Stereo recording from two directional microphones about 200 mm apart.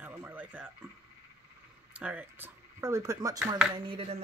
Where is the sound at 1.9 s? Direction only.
5° right (ahead or behind).